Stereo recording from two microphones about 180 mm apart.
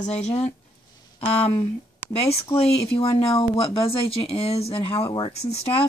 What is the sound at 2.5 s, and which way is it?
Speech, 20° left (ahead or behind).